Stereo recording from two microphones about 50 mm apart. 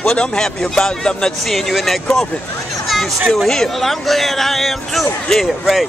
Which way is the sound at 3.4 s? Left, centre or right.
Centre.